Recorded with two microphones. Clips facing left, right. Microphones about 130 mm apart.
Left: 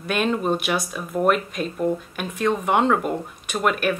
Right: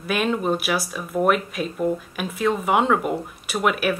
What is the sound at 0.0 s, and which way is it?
Speech, centre (ahead or behind).